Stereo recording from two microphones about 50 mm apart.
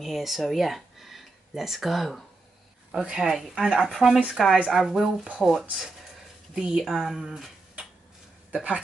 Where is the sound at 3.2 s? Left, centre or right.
Centre.